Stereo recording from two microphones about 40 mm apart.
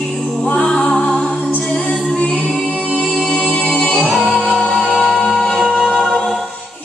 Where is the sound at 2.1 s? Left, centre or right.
Left.